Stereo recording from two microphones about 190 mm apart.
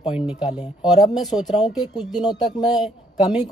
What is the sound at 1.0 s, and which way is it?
Speech, 20° left (ahead or behind).